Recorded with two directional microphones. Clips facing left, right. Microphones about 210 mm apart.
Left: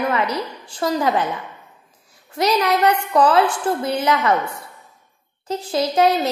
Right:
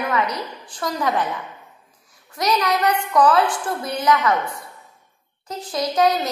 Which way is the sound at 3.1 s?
25° left (ahead or behind).